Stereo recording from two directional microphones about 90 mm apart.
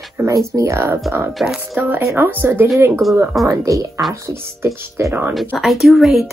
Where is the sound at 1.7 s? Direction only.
20° right (ahead or behind).